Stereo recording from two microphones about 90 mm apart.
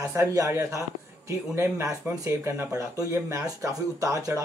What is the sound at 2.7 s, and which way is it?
Speech, 40° right (ahead or behind).